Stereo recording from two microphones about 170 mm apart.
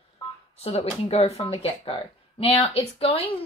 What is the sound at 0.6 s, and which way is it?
Speech, 35° left (ahead or behind).